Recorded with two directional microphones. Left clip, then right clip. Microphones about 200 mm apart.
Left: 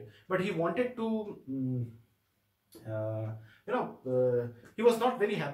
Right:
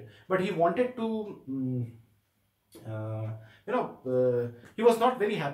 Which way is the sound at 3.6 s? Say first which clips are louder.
Right 3 dB; 10° right (ahead or behind).